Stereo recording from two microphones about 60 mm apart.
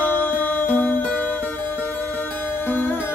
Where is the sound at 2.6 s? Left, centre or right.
Left.